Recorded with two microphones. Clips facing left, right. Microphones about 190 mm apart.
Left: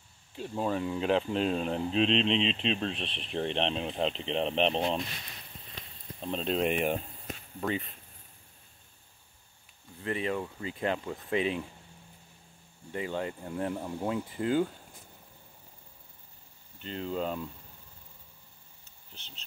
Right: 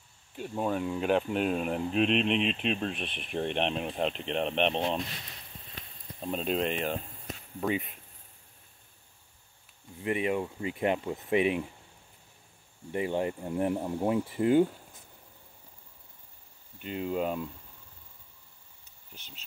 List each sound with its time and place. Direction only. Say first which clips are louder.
0.4 s speech: even; 5° right (ahead or behind)
3.0 s speech: even; 30° left (ahead or behind)
3.3 s speech: even; 5° right (ahead or behind)
6.2 s speech: right 1 dB; 5° right (ahead or behind)
6.6 s speech: left 2 dB; 15° left (ahead or behind)
7.6 s speech: right 2 dB; 15° right (ahead or behind)
10.0 s speech: right 3 dB; 15° right (ahead or behind)
12.9 s speech: right 4 dB; 20° right (ahead or behind)
16.8 s speech: right 2 dB; 10° right (ahead or behind)
19.1 s speech: right 1 dB; 10° right (ahead or behind)